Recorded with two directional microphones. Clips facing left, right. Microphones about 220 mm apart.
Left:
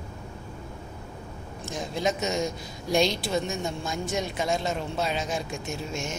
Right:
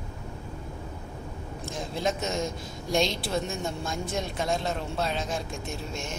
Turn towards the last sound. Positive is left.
turn(degrees=5)  # may be behind; listen again after turning